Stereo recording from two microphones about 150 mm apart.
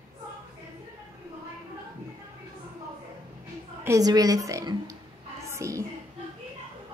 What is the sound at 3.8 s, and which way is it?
Speech, 25° right (ahead or behind).